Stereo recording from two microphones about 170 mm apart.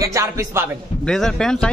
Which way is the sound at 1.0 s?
5° left (ahead or behind).